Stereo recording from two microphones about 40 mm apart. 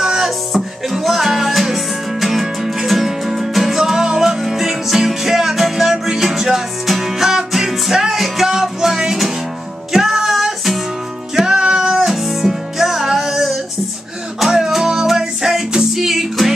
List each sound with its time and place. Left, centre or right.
0.0 s music: centre
0.8 s music: centre
11.3 s music: centre
12.1 s music: centre
14.7 s music: centre